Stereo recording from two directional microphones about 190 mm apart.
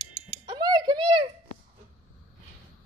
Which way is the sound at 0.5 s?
20° right (ahead or behind).